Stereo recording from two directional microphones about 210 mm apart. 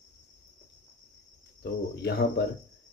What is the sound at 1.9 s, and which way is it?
Speech, 50° left (ahead or behind).